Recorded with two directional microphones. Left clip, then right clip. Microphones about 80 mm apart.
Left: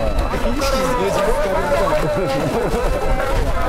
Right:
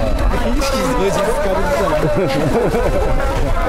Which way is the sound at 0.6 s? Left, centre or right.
Right.